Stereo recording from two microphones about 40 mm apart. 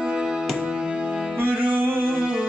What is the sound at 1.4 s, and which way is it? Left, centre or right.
Music, right.